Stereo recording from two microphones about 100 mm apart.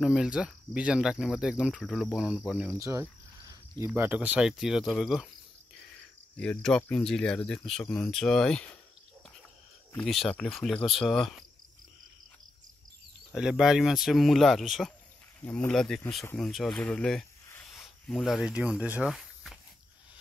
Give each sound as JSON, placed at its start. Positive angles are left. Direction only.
{"t": 0.0, "sound": "speech", "side_deg": -5}
{"t": 2.7, "sound": "cricket", "side_deg": -25}
{"t": 3.9, "sound": "speech", "side_deg": -20}
{"t": 4.5, "sound": "speech", "side_deg": -5}
{"t": 5.9, "sound": "cricket", "side_deg": 15}
{"t": 6.6, "sound": "speech", "side_deg": 5}
{"t": 10.0, "sound": "speech", "side_deg": 5}
{"t": 13.3, "sound": "speech", "side_deg": -5}
{"t": 19.0, "sound": "walk", "side_deg": 0}